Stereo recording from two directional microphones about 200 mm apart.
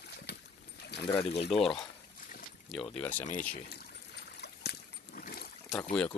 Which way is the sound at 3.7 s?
55° left (ahead or behind).